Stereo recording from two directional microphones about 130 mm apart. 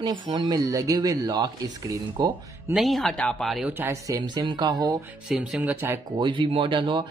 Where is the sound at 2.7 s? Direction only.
Centre (ahead or behind).